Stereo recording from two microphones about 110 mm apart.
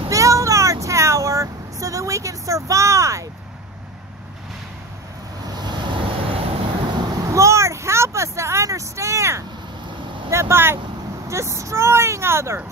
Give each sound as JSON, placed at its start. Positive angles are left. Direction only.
{"t": 0.1, "sound": "vehicle", "side_deg": -30}
{"t": 5.5, "sound": "vehicle", "side_deg": -40}
{"t": 6.9, "sound": "vehicle", "side_deg": -40}
{"t": 7.2, "sound": "vehicle", "side_deg": -25}